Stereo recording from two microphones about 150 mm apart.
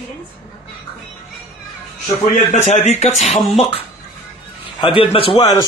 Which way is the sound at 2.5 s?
50° left (ahead or behind).